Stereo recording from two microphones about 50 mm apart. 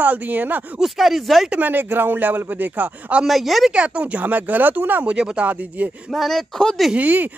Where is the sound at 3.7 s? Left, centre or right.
Right.